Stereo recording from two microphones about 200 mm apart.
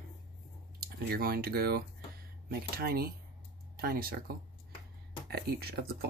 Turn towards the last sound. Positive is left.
turn(degrees=-50)  # may be behind; listen again after turning